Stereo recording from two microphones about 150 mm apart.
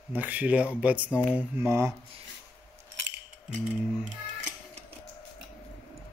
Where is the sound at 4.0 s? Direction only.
55° right (ahead or behind).